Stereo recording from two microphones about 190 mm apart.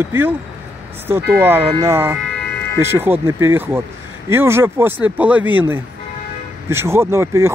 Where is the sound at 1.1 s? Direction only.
10° right (ahead or behind).